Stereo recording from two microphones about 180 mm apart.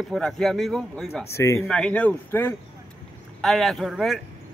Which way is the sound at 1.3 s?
15° left (ahead or behind).